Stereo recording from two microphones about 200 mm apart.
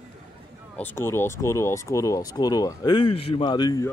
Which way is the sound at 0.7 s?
10° left (ahead or behind).